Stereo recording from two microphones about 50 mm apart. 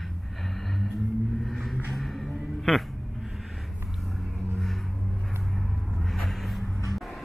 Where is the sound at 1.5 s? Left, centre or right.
Centre.